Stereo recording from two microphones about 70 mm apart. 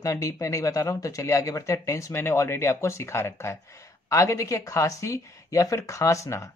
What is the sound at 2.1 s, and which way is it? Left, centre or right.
Speech, left.